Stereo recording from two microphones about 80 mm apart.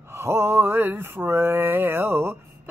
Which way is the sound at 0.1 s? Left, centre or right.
Right.